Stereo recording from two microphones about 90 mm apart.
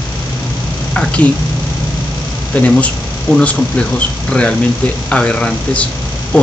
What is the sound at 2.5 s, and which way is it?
A man's voice, 15° left (ahead or behind).